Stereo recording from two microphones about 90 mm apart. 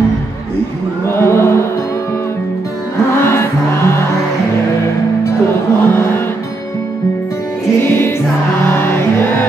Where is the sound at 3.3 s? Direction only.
30° left (ahead or behind).